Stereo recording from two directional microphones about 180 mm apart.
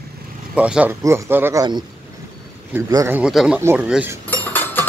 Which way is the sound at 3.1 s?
5° right (ahead or behind).